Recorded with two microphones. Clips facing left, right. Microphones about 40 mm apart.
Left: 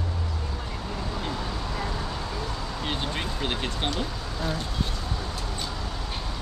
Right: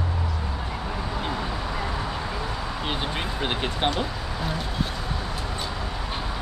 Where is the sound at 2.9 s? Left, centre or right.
Centre.